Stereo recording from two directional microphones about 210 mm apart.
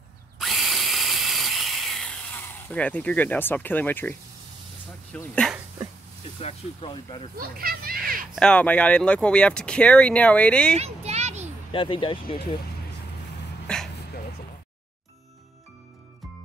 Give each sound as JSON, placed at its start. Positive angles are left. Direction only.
{"t": 0.4, "sound": "drill", "side_deg": 0}
{"t": 5.1, "sound": "speech", "side_deg": 5}
{"t": 6.4, "sound": "speech", "side_deg": 25}
{"t": 7.3, "sound": "children playing", "side_deg": -45}
{"t": 8.4, "sound": "speech", "side_deg": 5}
{"t": 10.8, "sound": "a sound", "side_deg": -30}
{"t": 11.7, "sound": "speech", "side_deg": 25}
{"t": 13.7, "sound": "dog", "side_deg": 5}